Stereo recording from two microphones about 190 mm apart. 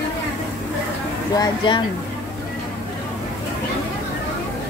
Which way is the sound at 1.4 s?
25° left (ahead or behind).